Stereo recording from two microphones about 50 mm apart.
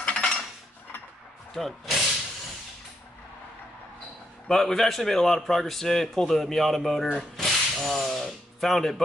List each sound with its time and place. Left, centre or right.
0.0 s cutlery: left
1.5 s a man's voice: centre
4.5 s a man's voice: centre
7.2 s a sound: centre